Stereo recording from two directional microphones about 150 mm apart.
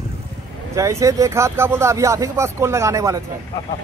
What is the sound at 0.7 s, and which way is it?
Speech, 20° right (ahead or behind).